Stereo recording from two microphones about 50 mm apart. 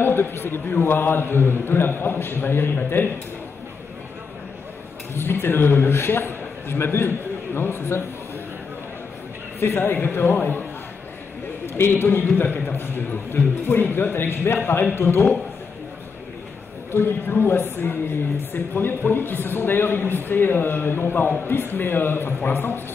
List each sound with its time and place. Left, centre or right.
0.0 s a man's voice: left
5.1 s a man's voice: left
9.6 s a man's voice: left
11.6 s a man's voice: left
16.9 s a man's voice: left